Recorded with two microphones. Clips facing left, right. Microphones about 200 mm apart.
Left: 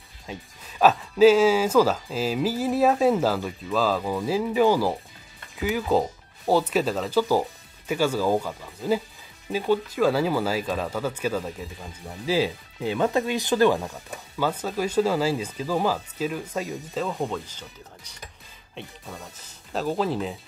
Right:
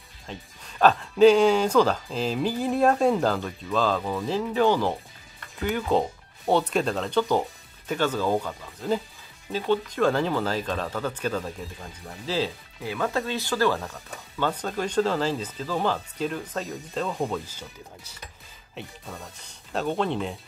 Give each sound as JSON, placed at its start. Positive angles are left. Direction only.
{"t": 0.3, "sound": "speech", "side_deg": 5}
{"t": 12.8, "sound": "speech", "side_deg": 20}